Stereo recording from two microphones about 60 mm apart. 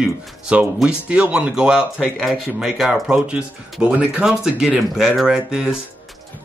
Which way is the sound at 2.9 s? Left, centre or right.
Centre.